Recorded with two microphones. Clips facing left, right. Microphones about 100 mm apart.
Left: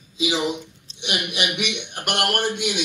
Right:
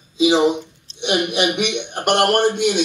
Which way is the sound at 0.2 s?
30° right (ahead or behind).